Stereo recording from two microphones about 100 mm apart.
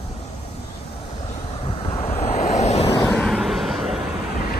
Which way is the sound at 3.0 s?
Centre (ahead or behind).